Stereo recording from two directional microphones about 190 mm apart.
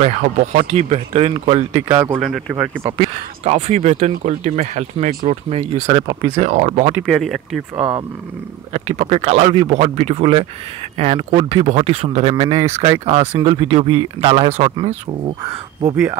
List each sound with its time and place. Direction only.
0.6 s speech: 35° right (ahead or behind)
1.9 s speech: 20° right (ahead or behind)
2.1 s speech: centre (ahead or behind)
3.0 s speech: 35° right (ahead or behind)
7.1 s speech: centre (ahead or behind)
7.7 s speech: 30° right (ahead or behind)
12.6 s speech: 15° right (ahead or behind)
13.0 s speech: 35° right (ahead or behind)